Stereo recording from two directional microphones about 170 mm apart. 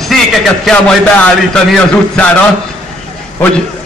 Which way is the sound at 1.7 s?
10° left (ahead or behind).